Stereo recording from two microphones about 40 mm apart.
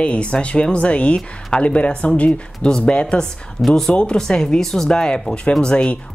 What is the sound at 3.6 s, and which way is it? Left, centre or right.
Speech, left.